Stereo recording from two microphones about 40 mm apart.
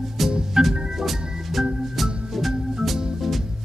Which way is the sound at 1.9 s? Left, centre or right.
Centre.